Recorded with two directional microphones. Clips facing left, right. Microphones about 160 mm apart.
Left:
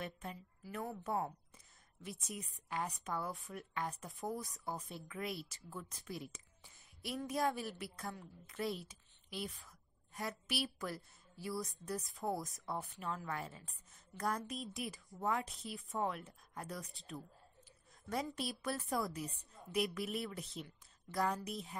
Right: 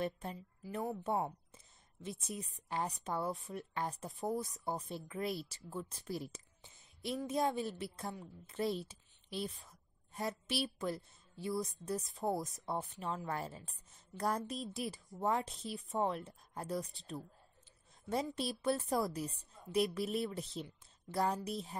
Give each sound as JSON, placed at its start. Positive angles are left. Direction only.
{"t": 0.0, "sound": "a woman's voice", "side_deg": -30}
{"t": 6.6, "sound": "a sound", "side_deg": -25}
{"t": 7.2, "sound": "a woman's voice", "side_deg": -25}
{"t": 8.8, "sound": "a sound", "side_deg": -25}
{"t": 10.4, "sound": "a woman's voice", "side_deg": -25}
{"t": 18.4, "sound": "a woman's voice", "side_deg": -25}